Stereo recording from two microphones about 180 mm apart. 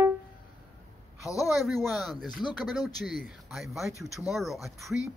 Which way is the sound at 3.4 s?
Centre (ahead or behind).